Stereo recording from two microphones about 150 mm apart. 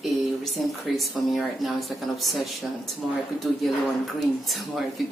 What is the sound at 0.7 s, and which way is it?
Speech, centre (ahead or behind).